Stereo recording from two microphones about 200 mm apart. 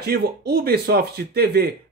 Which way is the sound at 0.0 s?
50° right (ahead or behind).